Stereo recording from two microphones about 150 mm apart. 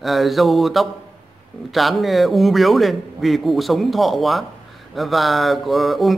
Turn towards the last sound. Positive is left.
turn(degrees=0)  # may be behind; listen again after turning